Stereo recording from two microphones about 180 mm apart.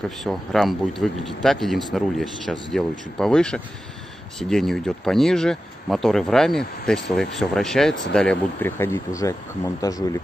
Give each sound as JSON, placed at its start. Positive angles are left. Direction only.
{"t": 0.2, "sound": "speech", "side_deg": 0}